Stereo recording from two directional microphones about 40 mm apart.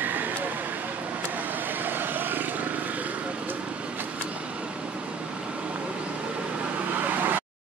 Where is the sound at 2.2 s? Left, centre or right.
Right.